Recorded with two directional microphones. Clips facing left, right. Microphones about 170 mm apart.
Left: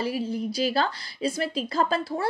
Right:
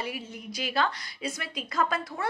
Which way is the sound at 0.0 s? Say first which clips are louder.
Left 9 dB; 30° left (ahead or behind).